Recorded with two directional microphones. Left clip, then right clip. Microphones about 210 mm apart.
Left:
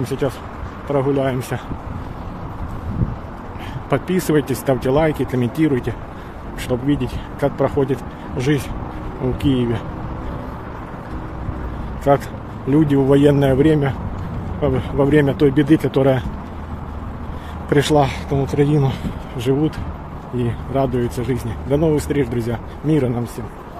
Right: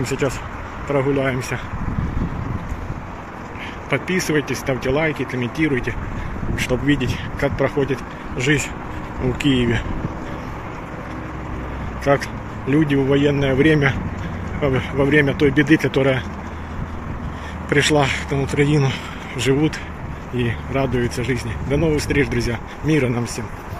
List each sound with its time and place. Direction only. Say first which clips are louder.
0.0 s speech: even; 10° left (ahead or behind)
3.9 s speech: left 2 dB; 25° left (ahead or behind)
12.1 s speech: left 2 dB; 15° left (ahead or behind)
13.6 s speech: even; 10° left (ahead or behind)
17.6 s speech: left 1 dB; 15° left (ahead or behind)